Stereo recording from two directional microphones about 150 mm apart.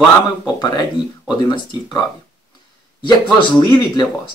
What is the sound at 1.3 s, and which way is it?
Speech, 30° left (ahead or behind).